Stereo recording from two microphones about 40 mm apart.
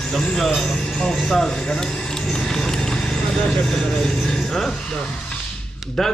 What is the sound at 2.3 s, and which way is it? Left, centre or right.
Clip-clop, centre.